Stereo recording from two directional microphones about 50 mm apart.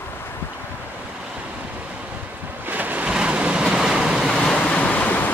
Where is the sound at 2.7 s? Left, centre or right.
Right.